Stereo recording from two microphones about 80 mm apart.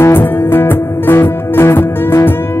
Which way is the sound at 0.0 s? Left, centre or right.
Left.